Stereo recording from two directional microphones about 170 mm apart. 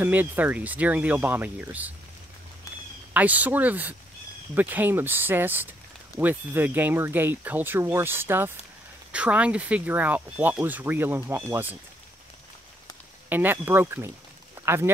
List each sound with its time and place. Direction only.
0.0 s speech: 10° right (ahead or behind)
3.1 s speech: 10° right (ahead or behind)
13.3 s speech: 10° right (ahead or behind)
14.6 s a sound: 15° right (ahead or behind)